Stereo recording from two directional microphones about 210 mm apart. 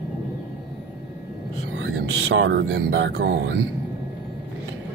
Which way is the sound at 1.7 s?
65° right (ahead or behind).